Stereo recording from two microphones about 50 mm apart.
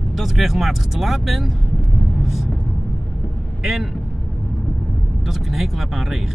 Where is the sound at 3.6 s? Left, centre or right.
Centre.